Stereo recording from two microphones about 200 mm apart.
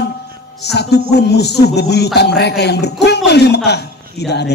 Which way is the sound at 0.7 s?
55° left (ahead or behind).